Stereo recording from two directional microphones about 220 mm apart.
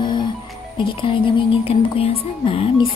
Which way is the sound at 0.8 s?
25° left (ahead or behind).